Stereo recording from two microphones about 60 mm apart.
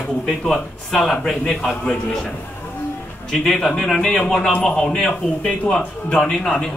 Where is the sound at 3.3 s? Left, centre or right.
Centre.